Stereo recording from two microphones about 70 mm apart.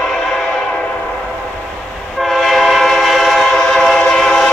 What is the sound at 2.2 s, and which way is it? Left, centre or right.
Train, centre.